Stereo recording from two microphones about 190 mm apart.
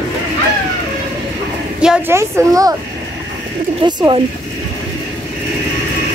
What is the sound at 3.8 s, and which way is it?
Speech, 25° right (ahead or behind).